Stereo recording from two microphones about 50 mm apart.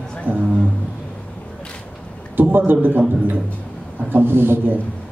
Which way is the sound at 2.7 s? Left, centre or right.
Right.